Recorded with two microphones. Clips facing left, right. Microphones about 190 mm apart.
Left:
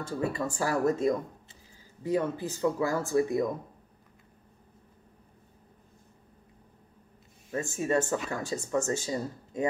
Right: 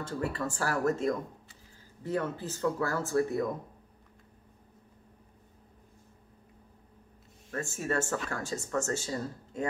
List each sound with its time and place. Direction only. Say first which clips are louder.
0.0 s speech: left 2 dB; 10° left (ahead or behind)
7.5 s speech: left 4 dB; 15° left (ahead or behind)